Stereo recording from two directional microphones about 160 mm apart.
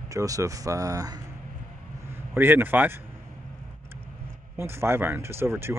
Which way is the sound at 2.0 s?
15° right (ahead or behind).